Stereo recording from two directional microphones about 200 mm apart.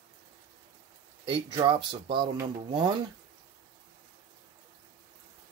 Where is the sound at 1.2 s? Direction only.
25° right (ahead or behind).